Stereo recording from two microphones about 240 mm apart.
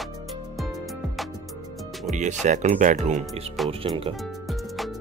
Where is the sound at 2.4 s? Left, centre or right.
Right.